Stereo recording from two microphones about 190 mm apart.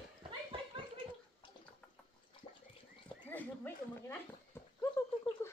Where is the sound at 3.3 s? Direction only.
10° left (ahead or behind).